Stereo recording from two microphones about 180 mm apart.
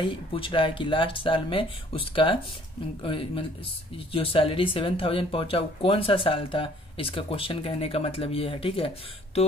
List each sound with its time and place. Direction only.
0.0 s speech: 30° left (ahead or behind)